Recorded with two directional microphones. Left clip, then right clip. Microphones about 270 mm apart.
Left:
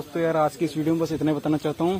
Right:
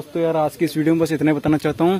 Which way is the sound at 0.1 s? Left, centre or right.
Right.